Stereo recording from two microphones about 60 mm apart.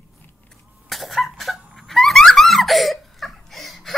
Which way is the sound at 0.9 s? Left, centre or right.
Centre.